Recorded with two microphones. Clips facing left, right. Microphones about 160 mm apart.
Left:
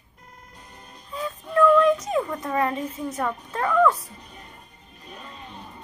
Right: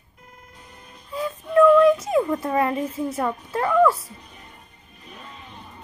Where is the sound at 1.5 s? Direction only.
25° right (ahead or behind).